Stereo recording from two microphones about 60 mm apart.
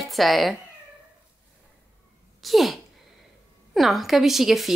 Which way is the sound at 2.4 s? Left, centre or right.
Centre.